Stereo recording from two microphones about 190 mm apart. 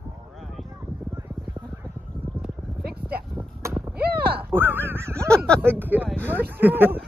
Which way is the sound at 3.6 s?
15° right (ahead or behind).